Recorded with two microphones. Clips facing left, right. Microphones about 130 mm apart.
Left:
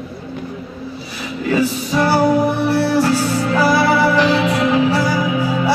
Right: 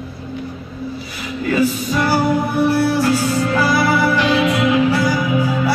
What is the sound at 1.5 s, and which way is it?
Music, 30° left (ahead or behind).